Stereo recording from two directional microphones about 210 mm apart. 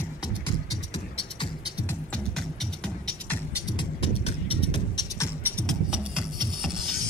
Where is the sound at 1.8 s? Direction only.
5° left (ahead or behind).